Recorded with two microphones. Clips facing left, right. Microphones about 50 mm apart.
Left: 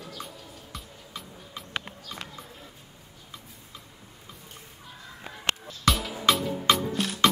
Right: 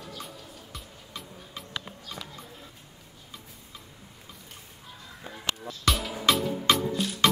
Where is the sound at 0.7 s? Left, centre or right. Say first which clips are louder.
Left 2 dB; centre.